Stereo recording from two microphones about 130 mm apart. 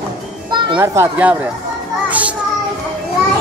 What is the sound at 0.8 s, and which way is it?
Speech, 20° right (ahead or behind).